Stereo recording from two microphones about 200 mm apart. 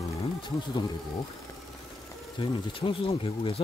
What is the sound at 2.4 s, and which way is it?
Speech, 25° left (ahead or behind).